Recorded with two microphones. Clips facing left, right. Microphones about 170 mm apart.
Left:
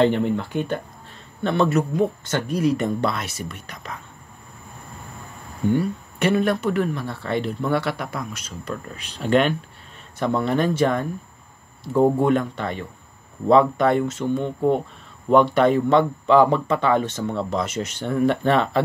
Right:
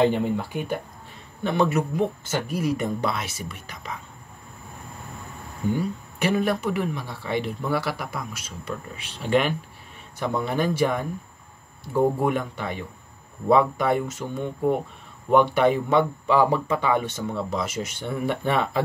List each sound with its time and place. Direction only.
0.0 s speech: 10° right (ahead or behind)
5.7 s speech: 5° right (ahead or behind)
12.2 s speech: 10° right (ahead or behind)
14.3 s speech: 20° left (ahead or behind)
15.3 s speech: 5° right (ahead or behind)